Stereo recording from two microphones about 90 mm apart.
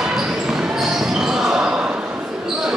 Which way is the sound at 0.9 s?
5° right (ahead or behind).